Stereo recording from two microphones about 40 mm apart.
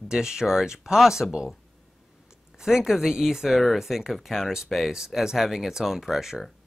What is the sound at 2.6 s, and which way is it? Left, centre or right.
Speech, centre.